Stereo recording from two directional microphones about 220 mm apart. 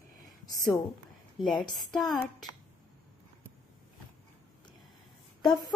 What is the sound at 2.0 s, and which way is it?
Speech, 20° left (ahead or behind).